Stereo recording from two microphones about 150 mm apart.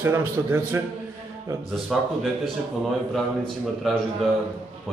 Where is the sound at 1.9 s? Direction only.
Centre (ahead or behind).